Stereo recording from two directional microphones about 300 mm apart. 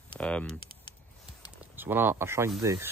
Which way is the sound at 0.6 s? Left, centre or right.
Centre.